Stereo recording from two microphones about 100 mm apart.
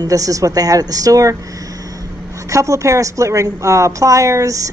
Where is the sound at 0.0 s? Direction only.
35° right (ahead or behind).